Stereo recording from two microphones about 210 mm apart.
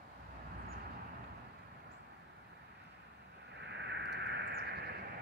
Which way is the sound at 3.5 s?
55° right (ahead or behind).